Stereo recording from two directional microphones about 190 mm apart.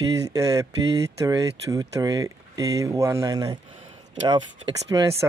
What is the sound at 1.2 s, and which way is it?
Speech, 20° right (ahead or behind).